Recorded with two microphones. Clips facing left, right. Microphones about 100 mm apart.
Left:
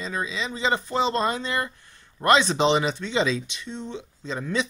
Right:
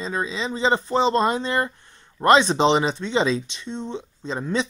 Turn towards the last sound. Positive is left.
turn(degrees=-30)  # may be behind; listen again after turning